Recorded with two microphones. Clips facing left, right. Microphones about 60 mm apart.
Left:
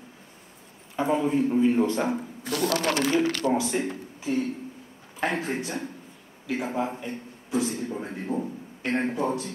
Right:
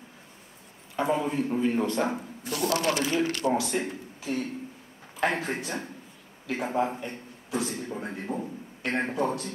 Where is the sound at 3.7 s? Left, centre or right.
Left.